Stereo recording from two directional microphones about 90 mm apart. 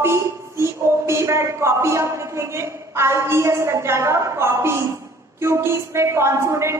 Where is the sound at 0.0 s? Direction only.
30° right (ahead or behind).